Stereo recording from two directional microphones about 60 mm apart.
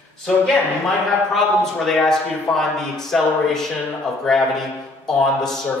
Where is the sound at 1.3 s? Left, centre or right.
Centre.